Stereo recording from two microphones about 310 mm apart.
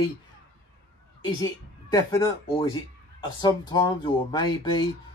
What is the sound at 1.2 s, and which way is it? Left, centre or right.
Speech, centre.